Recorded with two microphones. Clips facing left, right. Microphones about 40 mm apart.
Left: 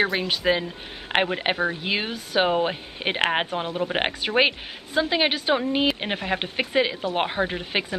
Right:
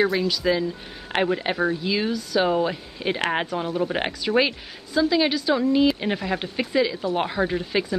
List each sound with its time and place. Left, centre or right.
0.0 s speech: left